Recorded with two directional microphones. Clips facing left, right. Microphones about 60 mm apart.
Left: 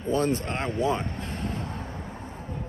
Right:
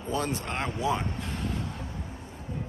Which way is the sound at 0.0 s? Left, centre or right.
Left.